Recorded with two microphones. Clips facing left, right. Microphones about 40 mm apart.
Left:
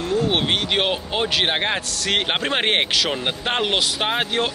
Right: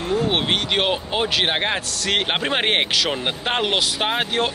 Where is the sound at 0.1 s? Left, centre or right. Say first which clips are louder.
Even; centre.